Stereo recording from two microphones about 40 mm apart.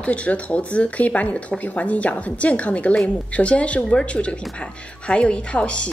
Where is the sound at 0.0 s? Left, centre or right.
Left.